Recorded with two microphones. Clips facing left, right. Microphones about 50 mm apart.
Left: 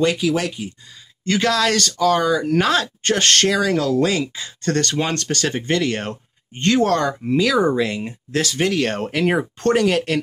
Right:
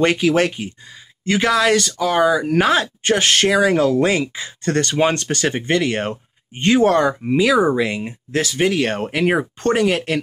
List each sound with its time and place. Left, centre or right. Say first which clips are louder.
0.0 s speech: right 3 dB; right
1.2 s speech: right 2 dB; centre
3.5 s speech: right 3 dB; right